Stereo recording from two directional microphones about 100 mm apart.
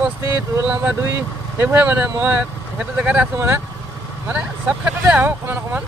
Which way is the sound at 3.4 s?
25° right (ahead or behind).